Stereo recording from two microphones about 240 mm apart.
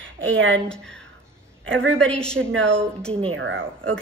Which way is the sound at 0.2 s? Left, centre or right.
Right.